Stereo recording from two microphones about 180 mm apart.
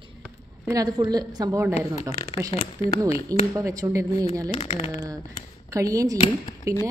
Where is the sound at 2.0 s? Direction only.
35° left (ahead or behind).